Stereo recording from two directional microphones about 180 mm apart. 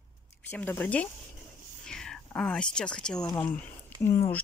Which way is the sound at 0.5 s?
10° left (ahead or behind).